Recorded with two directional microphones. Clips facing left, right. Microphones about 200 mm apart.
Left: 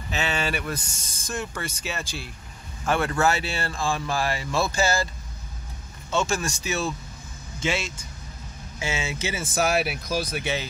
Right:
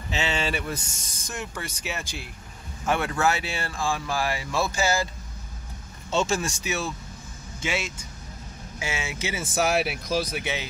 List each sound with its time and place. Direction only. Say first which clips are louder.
0.1 s speech: even; 25° right (ahead or behind)
6.1 s speech: right 1 dB; 30° right (ahead or behind)
7.6 s speech: left 2 dB; 15° right (ahead or behind)